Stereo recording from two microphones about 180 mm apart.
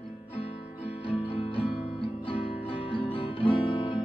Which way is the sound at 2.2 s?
30° left (ahead or behind).